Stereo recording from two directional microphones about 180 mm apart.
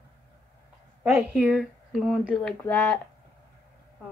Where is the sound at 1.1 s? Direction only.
5° right (ahead or behind).